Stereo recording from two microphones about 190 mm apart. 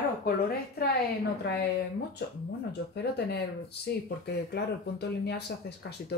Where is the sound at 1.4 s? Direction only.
60° left (ahead or behind).